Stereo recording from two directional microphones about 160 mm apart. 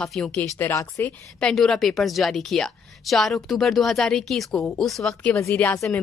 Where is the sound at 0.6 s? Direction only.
15° left (ahead or behind).